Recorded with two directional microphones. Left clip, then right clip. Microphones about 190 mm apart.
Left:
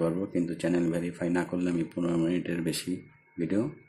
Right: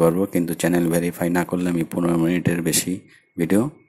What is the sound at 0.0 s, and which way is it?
Speech, 35° right (ahead or behind).